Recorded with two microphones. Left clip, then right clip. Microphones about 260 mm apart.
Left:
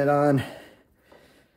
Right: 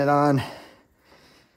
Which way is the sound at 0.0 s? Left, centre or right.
Centre.